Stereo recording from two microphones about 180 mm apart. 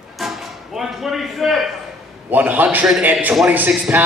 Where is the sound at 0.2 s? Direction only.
Centre (ahead or behind).